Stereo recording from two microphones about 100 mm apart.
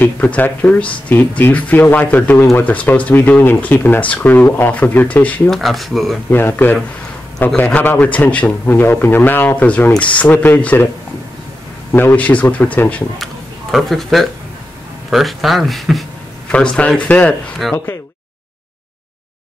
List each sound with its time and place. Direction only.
0.0 s a man's voice: 20° left (ahead or behind)
5.5 s speech: centre (ahead or behind)
6.3 s a man's voice: 20° left (ahead or behind)
11.9 s a man's voice: 20° left (ahead or behind)
13.2 s a sound: centre (ahead or behind)
15.0 s speech: centre (ahead or behind)
16.5 s a man's voice: 10° left (ahead or behind)
17.6 s speech: centre (ahead or behind)